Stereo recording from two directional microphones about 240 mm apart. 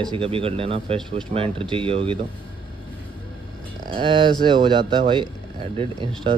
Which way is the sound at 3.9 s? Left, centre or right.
Centre.